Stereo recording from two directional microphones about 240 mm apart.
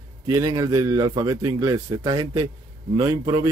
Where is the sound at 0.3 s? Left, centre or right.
Centre.